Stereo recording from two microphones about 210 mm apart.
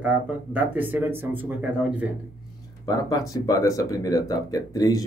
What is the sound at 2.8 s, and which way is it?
Speech, 15° left (ahead or behind).